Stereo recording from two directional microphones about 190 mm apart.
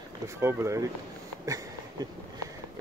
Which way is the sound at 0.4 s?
15° right (ahead or behind).